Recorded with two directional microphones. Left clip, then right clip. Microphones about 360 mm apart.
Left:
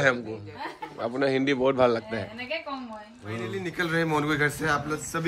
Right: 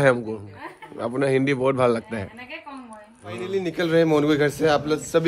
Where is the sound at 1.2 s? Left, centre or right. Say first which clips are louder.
Right 3 dB; centre.